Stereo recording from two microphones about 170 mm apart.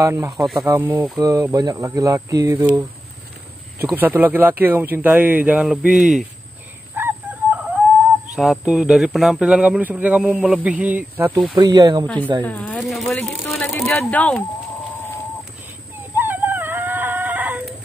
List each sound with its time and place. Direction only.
0.0 s speech: 20° right (ahead or behind)
0.3 s speech: centre (ahead or behind)
0.7 s speech: 15° right (ahead or behind)
3.8 s speech: 10° right (ahead or behind)
7.0 s chicken: 10° right (ahead or behind)
8.4 s speech: 5° right (ahead or behind)
11.5 s speech: 25° right (ahead or behind)
12.4 s speech: 10° left (ahead or behind)
16.2 s dog: 10° right (ahead or behind)